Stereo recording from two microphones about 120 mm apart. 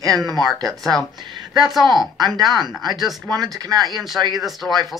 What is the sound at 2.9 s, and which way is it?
Speech, centre (ahead or behind).